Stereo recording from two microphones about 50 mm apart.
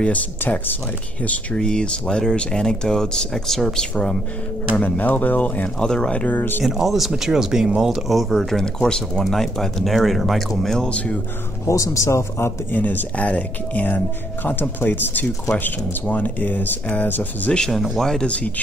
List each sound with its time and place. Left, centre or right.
1.2 s speech: left
1.6 s speech: centre
4.7 s speech: left
5.8 s speech: centre
6.1 s speech: left
6.6 s speech: centre
8.6 s speech: centre
10.9 s speech: left
11.6 s speech: left
12.7 s speech: left
13.1 s speech: left
17.5 s speech: centre
18.2 s speech: left